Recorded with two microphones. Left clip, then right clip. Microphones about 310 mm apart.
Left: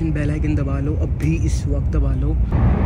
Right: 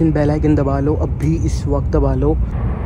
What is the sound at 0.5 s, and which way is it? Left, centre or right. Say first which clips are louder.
Speech: right 9 dB; right.